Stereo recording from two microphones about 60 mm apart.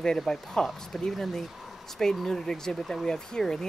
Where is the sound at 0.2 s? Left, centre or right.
Centre.